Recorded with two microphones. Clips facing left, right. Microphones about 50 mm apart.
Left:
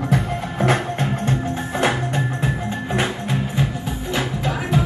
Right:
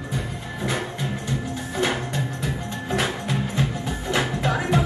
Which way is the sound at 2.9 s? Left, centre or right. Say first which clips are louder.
Left 1 dB; centre.